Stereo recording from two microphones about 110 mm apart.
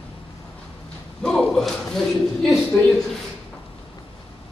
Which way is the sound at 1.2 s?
5° left (ahead or behind).